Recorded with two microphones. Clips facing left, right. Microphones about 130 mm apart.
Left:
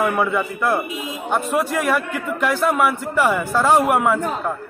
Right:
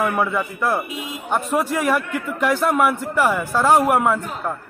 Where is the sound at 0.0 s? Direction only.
5° left (ahead or behind).